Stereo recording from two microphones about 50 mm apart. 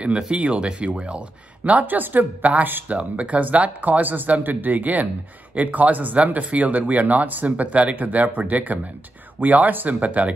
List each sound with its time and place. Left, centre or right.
0.0 s speech: right
1.6 s speech: right